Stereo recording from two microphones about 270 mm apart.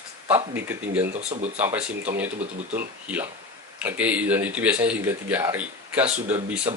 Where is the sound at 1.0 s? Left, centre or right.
Right.